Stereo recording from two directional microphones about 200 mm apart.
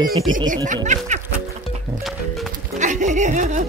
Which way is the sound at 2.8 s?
40° right (ahead or behind).